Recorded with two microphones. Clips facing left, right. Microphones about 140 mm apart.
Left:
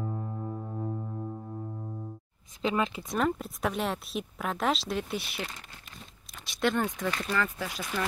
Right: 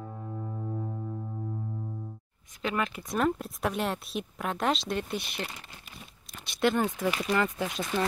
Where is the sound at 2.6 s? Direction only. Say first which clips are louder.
Left 2 dB; 25° left (ahead or behind).